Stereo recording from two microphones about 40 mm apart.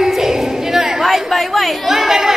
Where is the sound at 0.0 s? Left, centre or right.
Centre.